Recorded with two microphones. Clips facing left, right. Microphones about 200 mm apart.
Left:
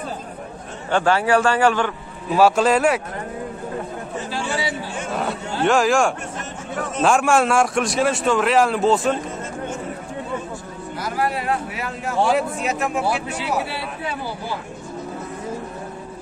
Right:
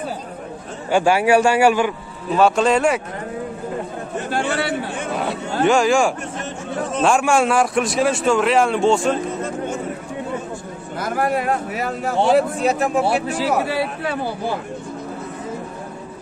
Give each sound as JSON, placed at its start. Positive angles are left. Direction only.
{"t": 0.8, "sound": "speech", "side_deg": -10}
{"t": 2.3, "sound": "speech", "side_deg": 5}
{"t": 4.2, "sound": "chatter", "side_deg": -60}
{"t": 5.1, "sound": "a sound", "side_deg": 0}
{"t": 7.0, "sound": "speech", "side_deg": 0}
{"t": 11.0, "sound": "speech", "side_deg": -50}
{"t": 12.2, "sound": "a man's voice", "side_deg": -30}